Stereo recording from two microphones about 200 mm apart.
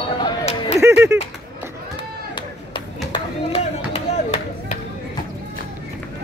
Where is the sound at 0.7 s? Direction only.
15° right (ahead or behind).